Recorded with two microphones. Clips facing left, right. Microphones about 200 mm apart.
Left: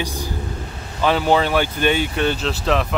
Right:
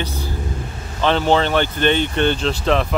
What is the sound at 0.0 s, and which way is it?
Speech, 15° left (ahead or behind).